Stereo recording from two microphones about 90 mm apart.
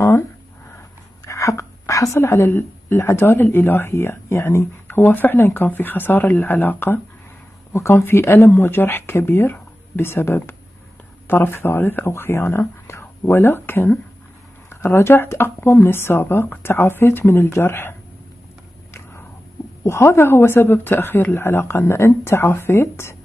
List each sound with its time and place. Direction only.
1.2 s a woman's voice: 35° left (ahead or behind)
19.8 s a woman's voice: 30° left (ahead or behind)